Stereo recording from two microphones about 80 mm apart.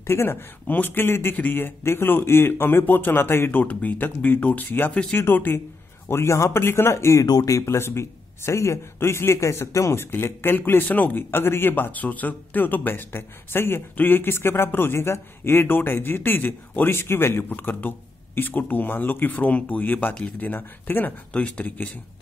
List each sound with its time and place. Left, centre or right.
0.0 s speech: left
7.2 s speech: left